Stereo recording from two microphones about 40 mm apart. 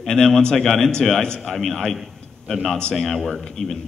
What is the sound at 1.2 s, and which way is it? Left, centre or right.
Speech, centre.